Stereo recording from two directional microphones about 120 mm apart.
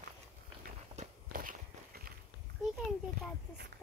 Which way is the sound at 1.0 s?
75° right (ahead or behind).